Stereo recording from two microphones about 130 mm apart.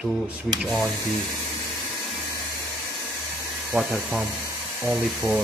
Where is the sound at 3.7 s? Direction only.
10° right (ahead or behind).